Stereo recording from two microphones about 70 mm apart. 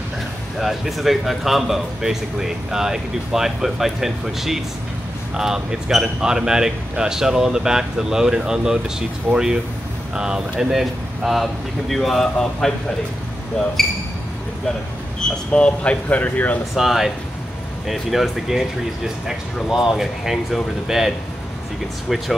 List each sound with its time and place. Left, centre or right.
0.6 s speech: centre
13.8 s speech: centre
15.1 s speech: centre
16.7 s speech: centre